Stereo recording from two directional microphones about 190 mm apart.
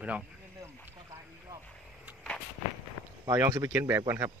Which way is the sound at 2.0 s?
10° right (ahead or behind).